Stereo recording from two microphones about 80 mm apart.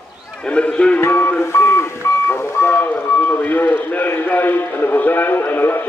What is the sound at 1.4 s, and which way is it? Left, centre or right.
Vehicle, left.